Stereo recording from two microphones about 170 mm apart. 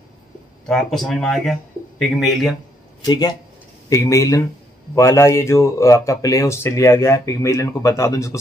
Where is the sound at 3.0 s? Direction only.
25° left (ahead or behind).